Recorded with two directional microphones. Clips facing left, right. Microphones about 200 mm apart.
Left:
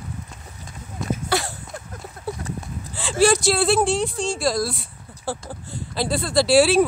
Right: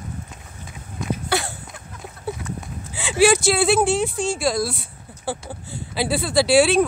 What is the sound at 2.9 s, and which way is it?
Speech, centre (ahead or behind).